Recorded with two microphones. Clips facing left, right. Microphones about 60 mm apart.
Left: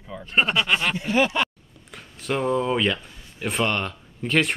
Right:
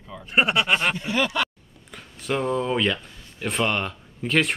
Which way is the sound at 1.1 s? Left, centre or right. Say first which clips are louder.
Left 6 dB; left.